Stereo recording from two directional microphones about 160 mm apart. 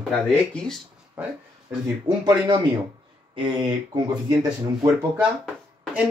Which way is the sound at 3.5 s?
25° right (ahead or behind).